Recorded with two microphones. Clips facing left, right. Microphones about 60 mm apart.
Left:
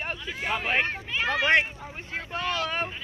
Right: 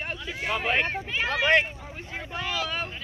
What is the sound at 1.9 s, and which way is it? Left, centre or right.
Vehicle, centre.